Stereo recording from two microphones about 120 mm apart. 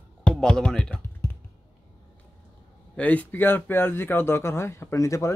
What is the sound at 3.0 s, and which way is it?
Speech, 15° left (ahead or behind).